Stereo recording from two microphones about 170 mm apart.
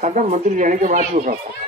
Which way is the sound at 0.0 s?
45° right (ahead or behind).